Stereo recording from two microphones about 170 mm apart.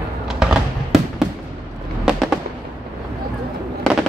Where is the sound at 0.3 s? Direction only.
5° right (ahead or behind).